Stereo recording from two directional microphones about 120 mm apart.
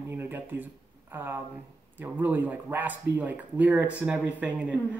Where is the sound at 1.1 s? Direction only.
15° right (ahead or behind).